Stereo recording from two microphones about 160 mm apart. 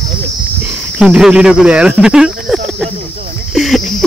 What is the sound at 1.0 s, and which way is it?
Speech, 5° right (ahead or behind).